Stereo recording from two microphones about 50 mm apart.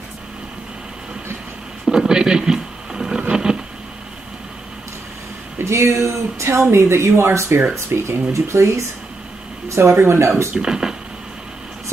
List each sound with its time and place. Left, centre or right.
1.9 s radio: centre
3.2 s a sound: centre
5.6 s speech: right
6.7 s speech: right
9.7 s speech: right
10.5 s speech: centre